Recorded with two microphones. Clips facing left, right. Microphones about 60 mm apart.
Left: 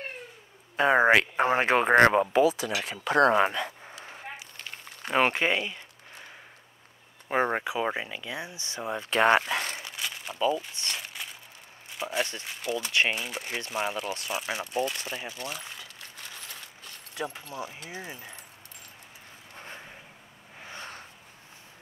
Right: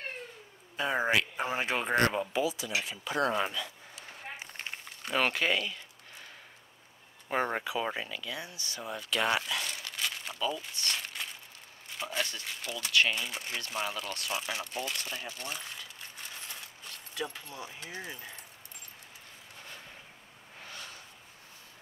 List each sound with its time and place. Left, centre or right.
0.7 s speech: left
4.4 s a sound: right
5.0 s speech: left
7.2 s speech: centre; by 9.8 s left
9.9 s crumpling: centre
10.4 s speech: left
11.2 s a sound: centre
12.2 s speech: left
17.1 s speech: left
17.8 s speech: centre
19.5 s a sound: left